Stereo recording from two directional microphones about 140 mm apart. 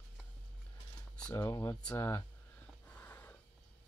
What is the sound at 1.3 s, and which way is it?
Speech, 20° left (ahead or behind).